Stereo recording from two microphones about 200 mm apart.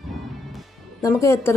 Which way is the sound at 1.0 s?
15° left (ahead or behind).